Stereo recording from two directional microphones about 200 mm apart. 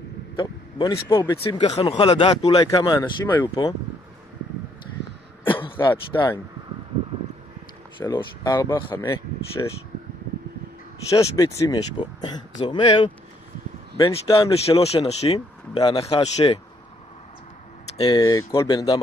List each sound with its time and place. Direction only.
0.4 s speech: 20° left (ahead or behind)
5.9 s speech: 20° left (ahead or behind)
8.0 s speech: 20° left (ahead or behind)
11.1 s speech: 15° left (ahead or behind)
17.9 s speech: 25° left (ahead or behind)